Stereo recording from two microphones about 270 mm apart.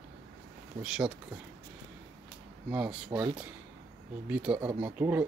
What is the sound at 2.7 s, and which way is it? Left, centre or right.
Speech, centre.